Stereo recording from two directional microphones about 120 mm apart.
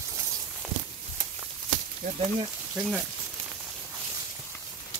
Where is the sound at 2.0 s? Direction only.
90° right.